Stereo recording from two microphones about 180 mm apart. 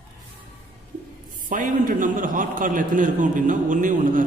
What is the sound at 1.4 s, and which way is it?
A man's voice, 45° right (ahead or behind).